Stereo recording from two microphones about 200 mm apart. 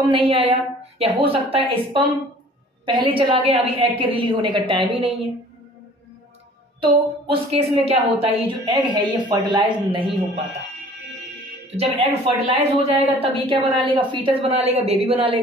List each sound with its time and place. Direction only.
0.1 s speech: 25° right (ahead or behind)
6.8 s speech: 25° right (ahead or behind)
11.6 s speech: 30° right (ahead or behind)